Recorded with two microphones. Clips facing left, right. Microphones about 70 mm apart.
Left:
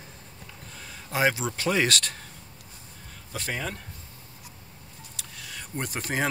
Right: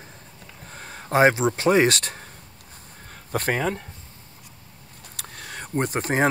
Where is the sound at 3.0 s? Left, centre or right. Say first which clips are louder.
Right 9 dB; right.